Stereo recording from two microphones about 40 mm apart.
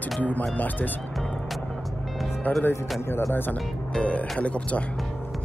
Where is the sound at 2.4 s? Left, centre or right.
Left.